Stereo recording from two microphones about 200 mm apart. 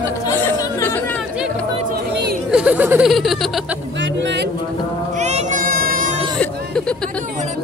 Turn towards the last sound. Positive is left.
turn(degrees=5)  # may be behind; listen again after turning